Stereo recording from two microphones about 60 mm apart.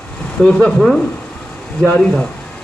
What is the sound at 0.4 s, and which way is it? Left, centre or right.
Speech, centre.